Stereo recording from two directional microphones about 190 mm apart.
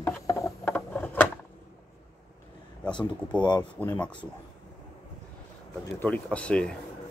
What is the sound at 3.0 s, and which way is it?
Speech, 25° left (ahead or behind).